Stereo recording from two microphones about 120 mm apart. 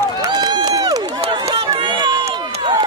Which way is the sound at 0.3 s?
35° right (ahead or behind).